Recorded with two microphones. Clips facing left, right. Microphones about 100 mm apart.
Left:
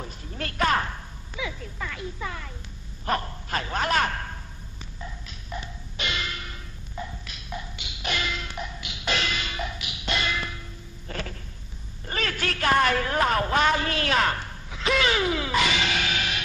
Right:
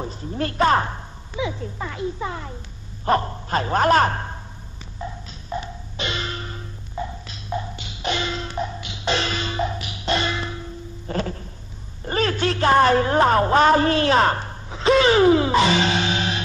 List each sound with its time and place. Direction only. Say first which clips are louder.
0.0 s a woman's voice: right 8 dB; 30° right (ahead or behind)
5.0 s music: right 8 dB; 30° right (ahead or behind)
12.1 s a man's voice: right 8 dB; 30° right (ahead or behind)